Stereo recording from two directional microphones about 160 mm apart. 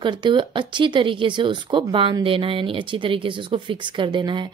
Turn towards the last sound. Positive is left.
turn(degrees=-30)  # may be behind; listen again after turning